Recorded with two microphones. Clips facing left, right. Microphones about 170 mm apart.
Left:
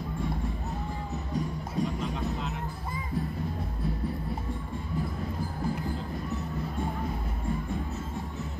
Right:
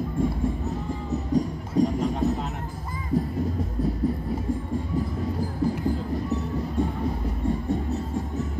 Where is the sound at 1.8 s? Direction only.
40° right (ahead or behind).